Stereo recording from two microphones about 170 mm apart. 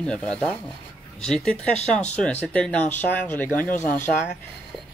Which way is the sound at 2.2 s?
5° left (ahead or behind).